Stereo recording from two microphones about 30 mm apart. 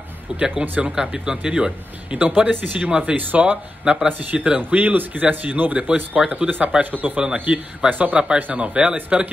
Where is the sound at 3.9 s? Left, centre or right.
Right.